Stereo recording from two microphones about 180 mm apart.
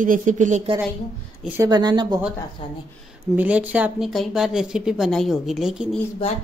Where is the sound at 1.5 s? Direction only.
25° right (ahead or behind).